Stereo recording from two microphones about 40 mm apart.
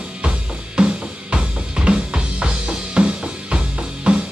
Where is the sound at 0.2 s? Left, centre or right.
Right.